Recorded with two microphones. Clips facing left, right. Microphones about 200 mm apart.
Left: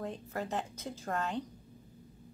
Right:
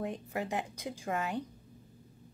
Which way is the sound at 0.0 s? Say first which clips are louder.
Right 2 dB; 15° right (ahead or behind).